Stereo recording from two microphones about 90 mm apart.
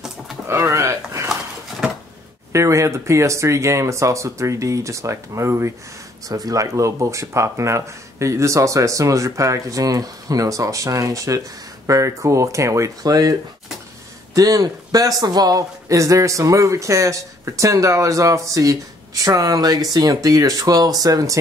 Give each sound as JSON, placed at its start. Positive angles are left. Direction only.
{"t": 0.5, "sound": "a sound", "side_deg": -35}
{"t": 2.5, "sound": "speech", "side_deg": -35}
{"t": 6.2, "sound": "speech", "side_deg": -40}
{"t": 14.3, "sound": "speech", "side_deg": -40}